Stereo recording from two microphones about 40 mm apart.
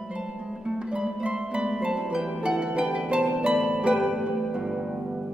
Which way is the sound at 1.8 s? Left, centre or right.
Right.